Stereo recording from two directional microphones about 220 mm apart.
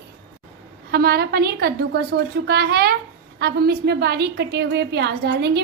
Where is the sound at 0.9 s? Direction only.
45° right (ahead or behind).